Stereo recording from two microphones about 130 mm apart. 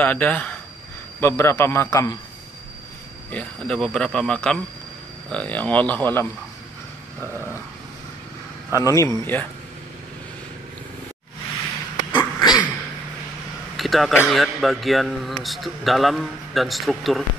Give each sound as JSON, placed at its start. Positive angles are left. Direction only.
{"t": 0.0, "sound": "a man's voice", "side_deg": 15}
{"t": 3.3, "sound": "a man's voice", "side_deg": 10}
{"t": 7.2, "sound": "dog", "side_deg": -20}
{"t": 8.8, "sound": "a man's voice", "side_deg": 25}
{"t": 12.1, "sound": "a sound", "side_deg": 35}
{"t": 13.7, "sound": "a sound", "side_deg": 0}
{"t": 14.2, "sound": "a man's voice", "side_deg": 0}